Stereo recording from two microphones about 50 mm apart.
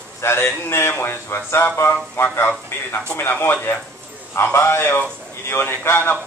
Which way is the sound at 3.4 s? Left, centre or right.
Left.